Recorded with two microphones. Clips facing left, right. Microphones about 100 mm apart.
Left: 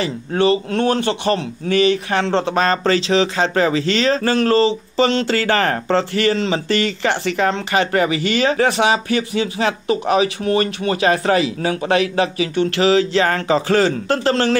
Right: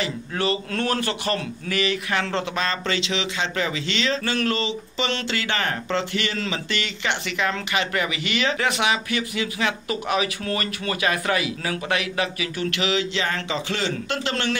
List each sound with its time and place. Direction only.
0.0 s speech: 30° left (ahead or behind)